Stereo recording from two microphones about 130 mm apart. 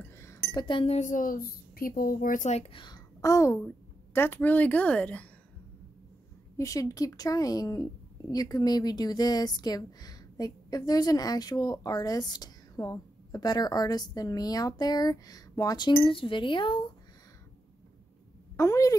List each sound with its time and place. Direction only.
0.0 s cutlery: 20° left (ahead or behind)
0.7 s speech: 40° left (ahead or behind)
0.9 s speech: 80° left; by 2.7 s 60° left (ahead or behind)
2.7 s a woman's voice: 35° left (ahead or behind); by 5.3 s 10° left (ahead or behind)
6.5 s speech: 25° left (ahead or behind)
18.6 s speech: 25° left (ahead or behind)